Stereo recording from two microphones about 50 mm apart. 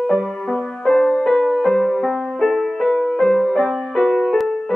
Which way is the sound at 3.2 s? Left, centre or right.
Centre.